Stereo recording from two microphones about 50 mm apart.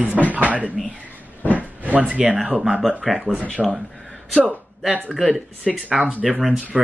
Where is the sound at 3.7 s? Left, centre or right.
Centre.